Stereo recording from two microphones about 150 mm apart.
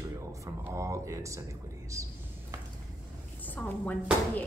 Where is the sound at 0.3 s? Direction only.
20° right (ahead or behind).